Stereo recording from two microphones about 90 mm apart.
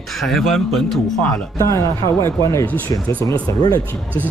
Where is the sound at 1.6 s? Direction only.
35° left (ahead or behind).